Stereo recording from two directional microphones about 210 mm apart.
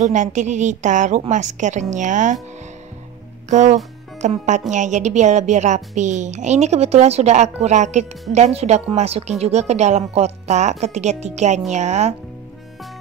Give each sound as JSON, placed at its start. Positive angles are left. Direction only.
{"t": 0.0, "sound": "speech", "side_deg": -35}
{"t": 3.4, "sound": "speech", "side_deg": -35}